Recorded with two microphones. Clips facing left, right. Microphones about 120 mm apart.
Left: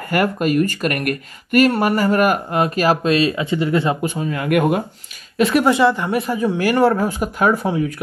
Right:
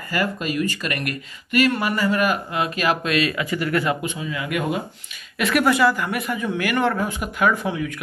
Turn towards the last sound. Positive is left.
turn(degrees=40)  # may be behind; listen again after turning